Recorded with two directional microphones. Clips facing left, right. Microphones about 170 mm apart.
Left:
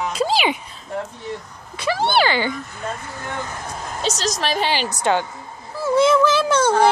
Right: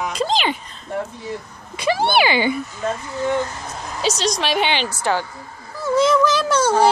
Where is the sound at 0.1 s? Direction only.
5° left (ahead or behind).